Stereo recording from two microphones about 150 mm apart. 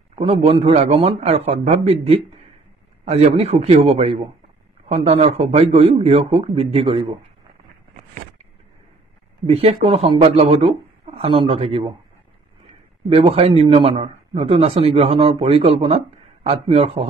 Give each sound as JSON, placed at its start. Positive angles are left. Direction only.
{"t": 0.1, "sound": "a man's voice", "side_deg": -45}
{"t": 9.5, "sound": "a man's voice", "side_deg": -45}
{"t": 13.1, "sound": "a man's voice", "side_deg": -40}